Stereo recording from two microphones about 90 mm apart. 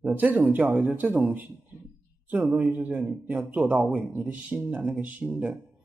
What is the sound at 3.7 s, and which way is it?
Speech, 5° right (ahead or behind).